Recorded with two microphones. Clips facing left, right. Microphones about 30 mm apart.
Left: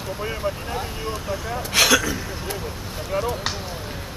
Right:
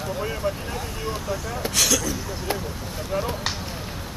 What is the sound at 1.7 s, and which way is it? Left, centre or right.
Speech, left.